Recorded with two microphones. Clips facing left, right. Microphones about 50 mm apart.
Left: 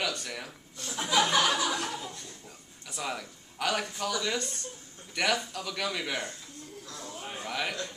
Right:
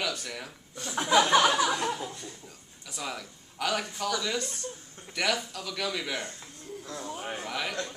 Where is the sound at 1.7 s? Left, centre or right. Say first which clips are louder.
Right 3 dB; right.